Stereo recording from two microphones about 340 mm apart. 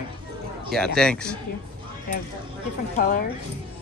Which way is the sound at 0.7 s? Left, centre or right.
Centre.